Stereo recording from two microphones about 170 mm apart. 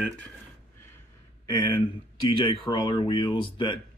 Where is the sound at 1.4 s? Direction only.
25° left (ahead or behind).